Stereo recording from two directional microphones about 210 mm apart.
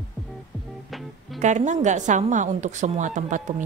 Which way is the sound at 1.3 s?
35° right (ahead or behind).